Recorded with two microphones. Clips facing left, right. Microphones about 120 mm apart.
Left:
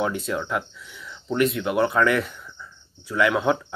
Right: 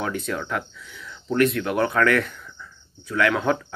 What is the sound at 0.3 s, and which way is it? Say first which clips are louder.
Speech: left 1 dB; 10° left (ahead or behind).